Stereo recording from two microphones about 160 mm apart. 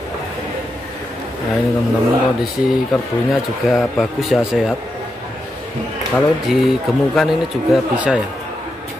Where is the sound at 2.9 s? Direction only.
Centre (ahead or behind).